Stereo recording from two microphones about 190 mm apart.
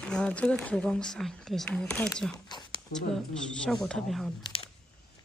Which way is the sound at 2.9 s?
5° left (ahead or behind).